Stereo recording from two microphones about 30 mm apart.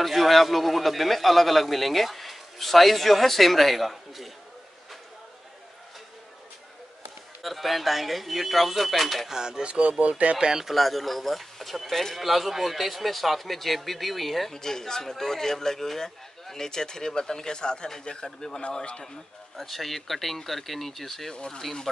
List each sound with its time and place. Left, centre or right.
0.0 s a man's voice: centre
7.4 s a man's voice: centre
9.3 s a sound: right
9.7 s speech: right
10.3 s a sound: right
10.6 s a man's voice: centre
12.2 s a man's voice: centre
14.5 s a man's voice: centre
19.5 s a man's voice: centre